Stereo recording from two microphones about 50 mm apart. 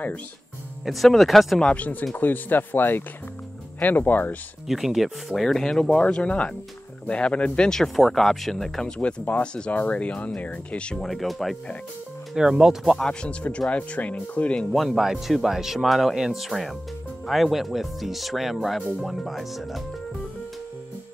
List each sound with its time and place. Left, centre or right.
0.8 s speech: centre
1.6 s speech: left
4.6 s speech: centre
5.3 s speech: centre
5.9 s speech: left; by 8.9 s centre
9.4 s speech: left
11.0 s speech: centre
12.4 s speech: centre
13.0 s speech: left
14.7 s speech: centre